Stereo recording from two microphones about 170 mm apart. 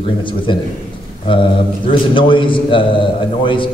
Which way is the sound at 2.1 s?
30° left (ahead or behind).